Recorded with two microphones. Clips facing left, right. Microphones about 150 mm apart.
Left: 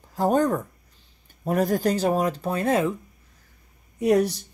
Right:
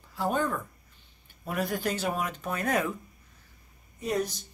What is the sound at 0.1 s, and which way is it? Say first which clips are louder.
Speech: left 8 dB; 40° left (ahead or behind).